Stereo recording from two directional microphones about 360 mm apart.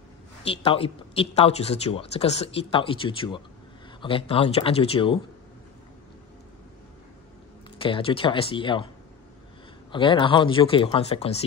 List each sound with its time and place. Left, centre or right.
0.4 s speech: centre
7.8 s speech: centre
9.9 s speech: centre